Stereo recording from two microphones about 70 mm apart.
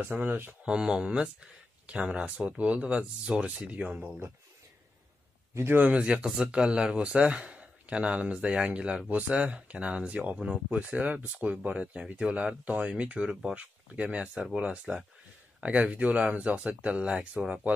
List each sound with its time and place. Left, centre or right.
0.0 s speech: right
0.7 s speech: centre
5.5 s a man's voice: right
5.8 s speech: centre